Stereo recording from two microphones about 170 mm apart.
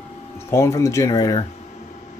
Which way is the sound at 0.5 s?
15° left (ahead or behind).